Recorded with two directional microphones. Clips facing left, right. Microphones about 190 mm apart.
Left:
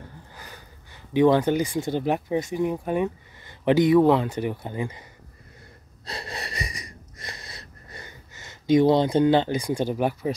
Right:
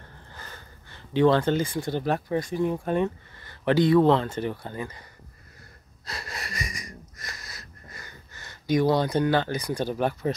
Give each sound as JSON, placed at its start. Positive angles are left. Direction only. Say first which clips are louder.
{"t": 0.3, "sound": "speech", "louder": "even", "side_deg": 10}
{"t": 6.0, "sound": "wheeze", "louder": "left 3 dB", "side_deg": 30}